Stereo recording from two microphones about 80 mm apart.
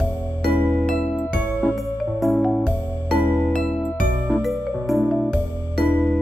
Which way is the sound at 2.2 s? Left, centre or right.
Centre.